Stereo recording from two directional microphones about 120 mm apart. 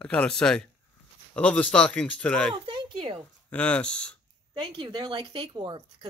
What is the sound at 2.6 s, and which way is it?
Speech, 45° right (ahead or behind).